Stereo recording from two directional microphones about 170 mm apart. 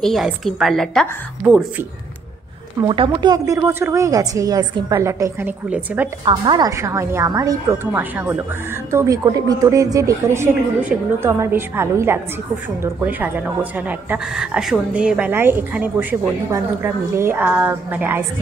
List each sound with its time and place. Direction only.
0.0 s a woman's voice: centre (ahead or behind)
2.9 s a woman's voice: 30° right (ahead or behind); by 6.0 s 10° right (ahead or behind)
6.2 s a woman's voice: 25° right (ahead or behind); by 18.2 s 10° right (ahead or behind)